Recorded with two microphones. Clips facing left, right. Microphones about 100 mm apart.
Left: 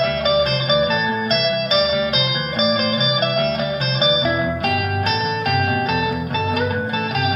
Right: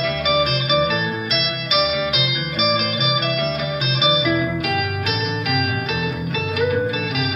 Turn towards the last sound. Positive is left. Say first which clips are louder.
# left 1 dB
turn(degrees=45)  # may be behind; listen again after turning